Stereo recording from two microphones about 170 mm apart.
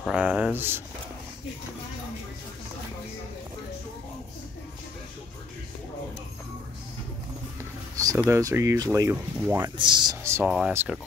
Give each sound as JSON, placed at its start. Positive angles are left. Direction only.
{"t": 0.0, "sound": "speech", "side_deg": -10}
{"t": 8.3, "sound": "speech", "side_deg": -20}
{"t": 9.8, "sound": "speech", "side_deg": -25}